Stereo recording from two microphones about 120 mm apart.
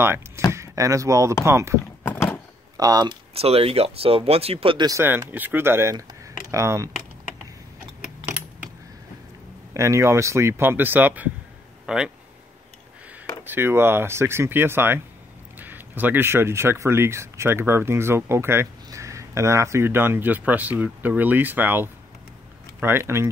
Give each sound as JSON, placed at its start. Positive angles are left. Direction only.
{"t": 0.5, "sound": "speech", "side_deg": -25}
{"t": 2.0, "sound": "a sound", "side_deg": 20}
{"t": 2.8, "sound": "speech", "side_deg": -30}
{"t": 3.3, "sound": "speech", "side_deg": -55}
{"t": 5.0, "sound": "speech", "side_deg": -15}
{"t": 9.8, "sound": "speech", "side_deg": -25}
{"t": 11.8, "sound": "a sound", "side_deg": -5}
{"t": 13.4, "sound": "speech", "side_deg": -15}